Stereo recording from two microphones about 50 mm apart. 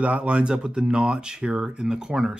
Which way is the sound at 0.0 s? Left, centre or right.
Right.